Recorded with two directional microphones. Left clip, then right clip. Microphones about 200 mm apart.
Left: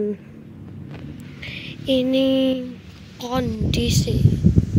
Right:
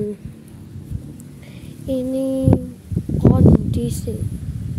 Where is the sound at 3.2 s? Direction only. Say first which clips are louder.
Right 8 dB; 20° right (ahead or behind).